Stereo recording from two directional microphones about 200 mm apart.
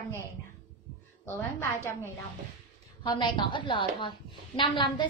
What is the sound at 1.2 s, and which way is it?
Speech, 10° left (ahead or behind).